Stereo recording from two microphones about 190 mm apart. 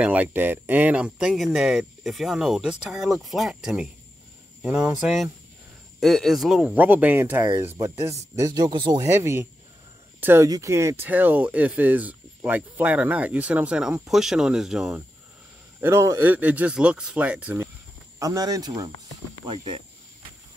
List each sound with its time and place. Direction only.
0.0 s speech: 10° right (ahead or behind)
15.8 s speech: 15° right (ahead or behind)
18.2 s speech: 20° right (ahead or behind)